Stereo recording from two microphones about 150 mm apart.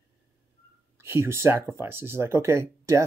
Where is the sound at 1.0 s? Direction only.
15° right (ahead or behind).